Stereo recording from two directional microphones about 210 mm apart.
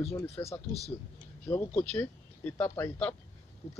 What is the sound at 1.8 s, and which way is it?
A man's voice, 5° left (ahead or behind).